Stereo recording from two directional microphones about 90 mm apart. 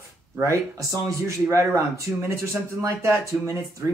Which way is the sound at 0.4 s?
35° right (ahead or behind).